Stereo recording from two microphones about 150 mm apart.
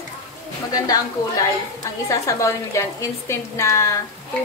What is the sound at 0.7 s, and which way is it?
Speech, 25° left (ahead or behind).